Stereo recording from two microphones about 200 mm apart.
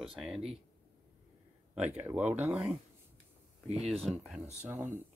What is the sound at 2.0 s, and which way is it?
Speech, 10° right (ahead or behind).